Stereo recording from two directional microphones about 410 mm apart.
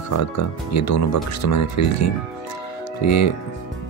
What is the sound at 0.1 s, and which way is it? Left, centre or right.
Speech, left.